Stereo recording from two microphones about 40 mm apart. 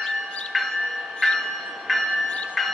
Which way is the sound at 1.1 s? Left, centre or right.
Centre.